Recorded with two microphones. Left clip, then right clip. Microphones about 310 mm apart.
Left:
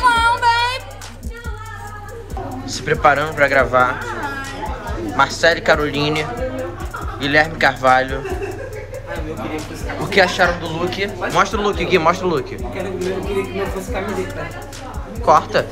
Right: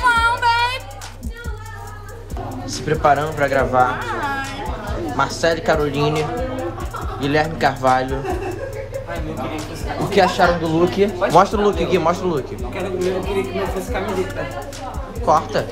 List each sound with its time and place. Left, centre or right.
0.0 s a sound: centre
2.9 s speech: centre
10.0 s speech: centre
15.2 s speech: centre